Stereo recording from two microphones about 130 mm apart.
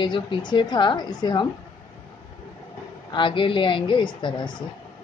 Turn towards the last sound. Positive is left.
turn(degrees=40)  # may be behind; listen again after turning